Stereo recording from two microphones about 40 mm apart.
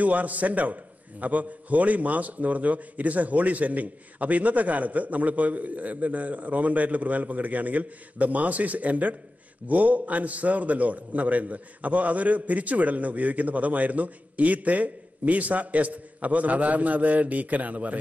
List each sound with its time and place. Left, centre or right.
0.0 s a man's voice: right